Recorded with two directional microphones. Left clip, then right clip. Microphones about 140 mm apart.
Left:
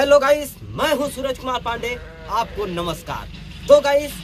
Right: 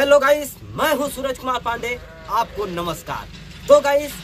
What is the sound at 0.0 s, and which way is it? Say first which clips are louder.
A man's voice: even; 10° right (ahead or behind).